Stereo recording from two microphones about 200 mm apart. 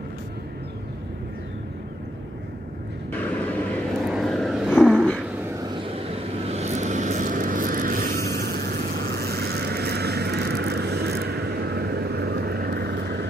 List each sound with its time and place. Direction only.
4.0 s vehicle: centre (ahead or behind)
5.6 s vehicle: 25° right (ahead or behind); by 13.3 s 55° right (ahead or behind)